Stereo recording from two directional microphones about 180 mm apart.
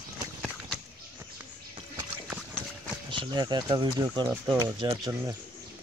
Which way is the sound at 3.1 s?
25° right (ahead or behind).